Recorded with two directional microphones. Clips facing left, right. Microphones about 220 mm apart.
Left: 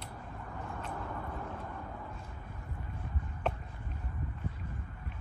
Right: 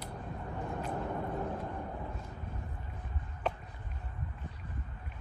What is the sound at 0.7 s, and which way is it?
Vehicle, 30° right (ahead or behind).